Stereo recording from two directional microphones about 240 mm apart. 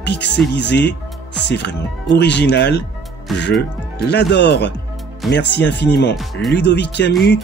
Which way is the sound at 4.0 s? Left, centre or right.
Left.